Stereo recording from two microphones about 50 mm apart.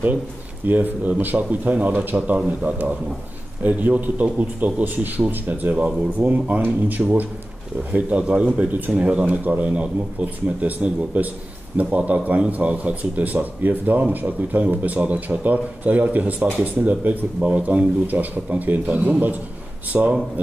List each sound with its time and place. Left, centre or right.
0.7 s a man's voice: right